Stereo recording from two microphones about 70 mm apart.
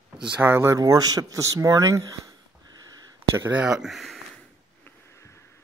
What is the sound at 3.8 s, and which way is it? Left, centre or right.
Speech, centre.